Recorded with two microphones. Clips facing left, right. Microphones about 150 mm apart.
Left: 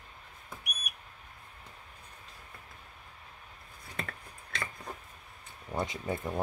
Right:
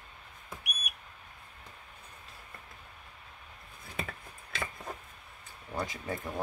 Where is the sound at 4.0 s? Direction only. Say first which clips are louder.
Right 1 dB; 5° right (ahead or behind).